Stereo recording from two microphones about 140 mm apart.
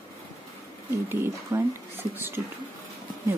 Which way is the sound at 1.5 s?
15° right (ahead or behind).